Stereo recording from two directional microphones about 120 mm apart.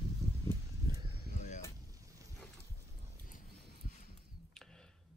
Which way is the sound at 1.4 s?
80° left.